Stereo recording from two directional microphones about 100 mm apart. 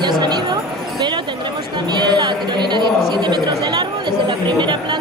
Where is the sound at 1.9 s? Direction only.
45° right (ahead or behind).